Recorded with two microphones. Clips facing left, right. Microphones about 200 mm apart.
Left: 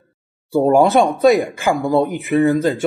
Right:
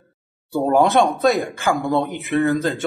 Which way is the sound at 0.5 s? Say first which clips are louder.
Left 4 dB; 10° left (ahead or behind).